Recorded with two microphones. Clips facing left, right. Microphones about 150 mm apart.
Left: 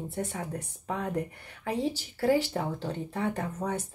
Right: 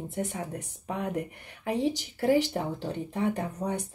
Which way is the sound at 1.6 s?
20° right (ahead or behind).